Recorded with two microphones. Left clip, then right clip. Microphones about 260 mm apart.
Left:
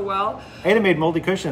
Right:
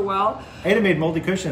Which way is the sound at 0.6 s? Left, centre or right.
Centre.